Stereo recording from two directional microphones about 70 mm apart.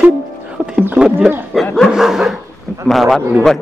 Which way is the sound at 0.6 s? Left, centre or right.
Right.